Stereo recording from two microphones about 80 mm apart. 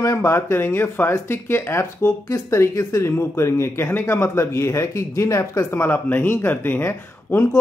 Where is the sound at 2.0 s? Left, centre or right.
Left.